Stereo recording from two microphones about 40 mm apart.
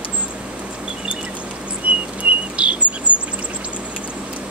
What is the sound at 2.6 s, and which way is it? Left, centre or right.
Bird vocalization, right.